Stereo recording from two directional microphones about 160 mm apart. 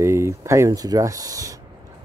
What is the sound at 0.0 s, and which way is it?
Speech, 15° right (ahead or behind).